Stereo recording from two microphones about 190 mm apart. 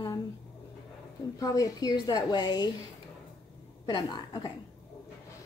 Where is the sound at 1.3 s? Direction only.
20° left (ahead or behind).